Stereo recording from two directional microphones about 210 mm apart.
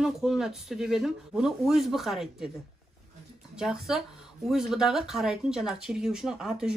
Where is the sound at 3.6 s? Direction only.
Centre (ahead or behind).